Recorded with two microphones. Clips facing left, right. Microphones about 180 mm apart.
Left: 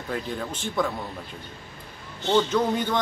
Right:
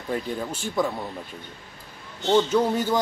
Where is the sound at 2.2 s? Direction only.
10° right (ahead or behind).